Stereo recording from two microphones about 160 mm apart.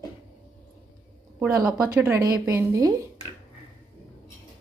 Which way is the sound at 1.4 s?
5° right (ahead or behind).